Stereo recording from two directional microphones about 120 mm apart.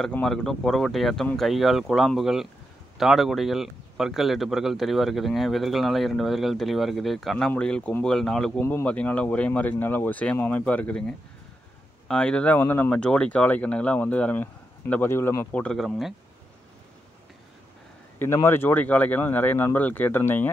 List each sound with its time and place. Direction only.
0.0 s speech: 5° left (ahead or behind)
8.5 s speech: 20° left (ahead or behind)
15.6 s speech: centre (ahead or behind)
18.2 s speech: 20° left (ahead or behind)